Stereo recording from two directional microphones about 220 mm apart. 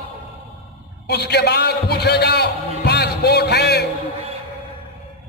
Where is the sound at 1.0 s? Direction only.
50° left (ahead or behind).